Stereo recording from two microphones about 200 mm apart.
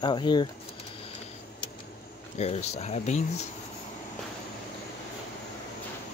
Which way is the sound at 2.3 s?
35° left (ahead or behind).